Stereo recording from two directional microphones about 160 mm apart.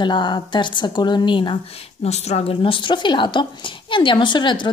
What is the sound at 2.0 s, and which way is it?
Speech, 40° left (ahead or behind).